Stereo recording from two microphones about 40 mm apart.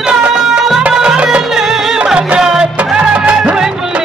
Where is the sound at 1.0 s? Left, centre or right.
Right.